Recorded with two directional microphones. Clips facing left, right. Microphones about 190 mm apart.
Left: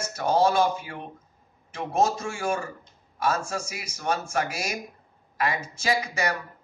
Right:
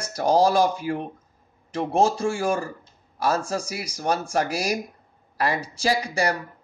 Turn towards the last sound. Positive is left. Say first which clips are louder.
# right 3 dB
turn(degrees=-35)  # may be behind; listen again after turning